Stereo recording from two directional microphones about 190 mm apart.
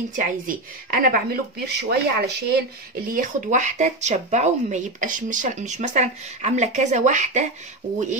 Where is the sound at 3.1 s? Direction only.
45° right (ahead or behind).